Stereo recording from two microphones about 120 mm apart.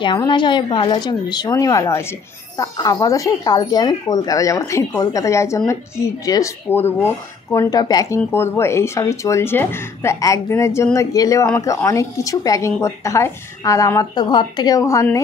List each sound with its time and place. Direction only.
0.3 s a woman's voice: 40° left (ahead or behind)
8.3 s speech: 20° left (ahead or behind)